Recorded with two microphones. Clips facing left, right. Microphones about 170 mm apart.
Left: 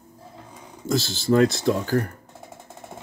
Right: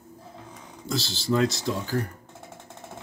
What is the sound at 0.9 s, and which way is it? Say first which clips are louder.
Speech: left 5 dB; 50° left (ahead or behind).